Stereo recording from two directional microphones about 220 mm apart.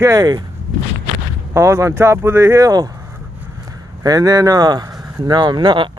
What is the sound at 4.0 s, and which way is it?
Speech, 15° right (ahead or behind).